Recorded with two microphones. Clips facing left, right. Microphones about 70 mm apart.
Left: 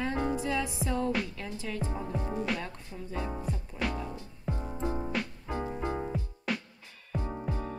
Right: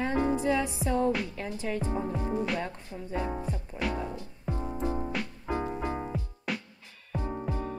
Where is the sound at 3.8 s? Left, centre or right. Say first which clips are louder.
Right 1 dB; centre.